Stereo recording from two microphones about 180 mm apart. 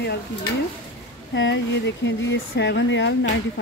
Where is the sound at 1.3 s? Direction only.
80° left.